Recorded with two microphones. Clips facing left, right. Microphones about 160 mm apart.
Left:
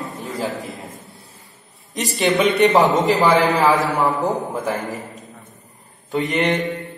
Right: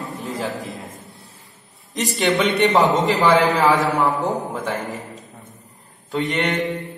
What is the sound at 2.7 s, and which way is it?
A man's voice, centre (ahead or behind).